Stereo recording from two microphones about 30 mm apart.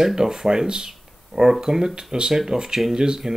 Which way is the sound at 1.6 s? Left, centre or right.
Centre.